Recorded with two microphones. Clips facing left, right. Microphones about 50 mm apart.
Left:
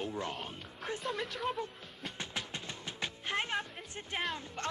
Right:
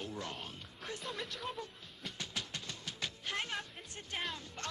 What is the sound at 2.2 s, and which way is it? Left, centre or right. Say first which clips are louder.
Music: left 2 dB; left.